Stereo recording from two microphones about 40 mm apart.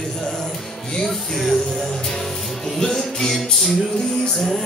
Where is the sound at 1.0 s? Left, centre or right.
Centre.